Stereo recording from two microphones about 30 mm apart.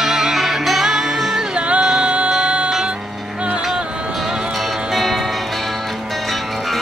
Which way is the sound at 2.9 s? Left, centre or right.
Right.